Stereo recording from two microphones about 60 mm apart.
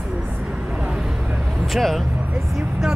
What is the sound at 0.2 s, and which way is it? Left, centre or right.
Vehicle, right.